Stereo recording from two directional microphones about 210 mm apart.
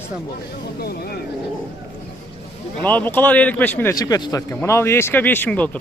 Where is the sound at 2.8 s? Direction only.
5° left (ahead or behind).